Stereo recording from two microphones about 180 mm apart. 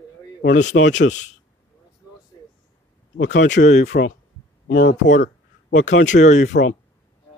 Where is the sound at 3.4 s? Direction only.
40° left (ahead or behind).